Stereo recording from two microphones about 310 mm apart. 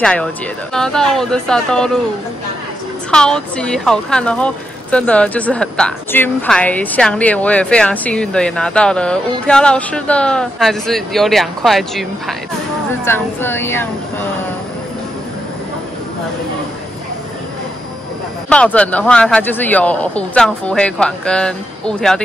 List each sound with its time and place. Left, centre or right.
0.0 s speech: centre
3.1 s speech: centre
18.5 s speech: centre